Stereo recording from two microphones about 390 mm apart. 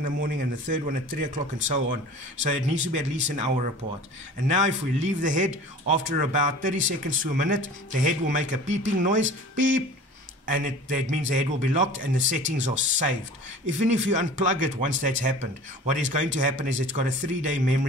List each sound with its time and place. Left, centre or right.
0.0 s a man's voice: right
9.2 s a man's voice: right
10.4 s a man's voice: centre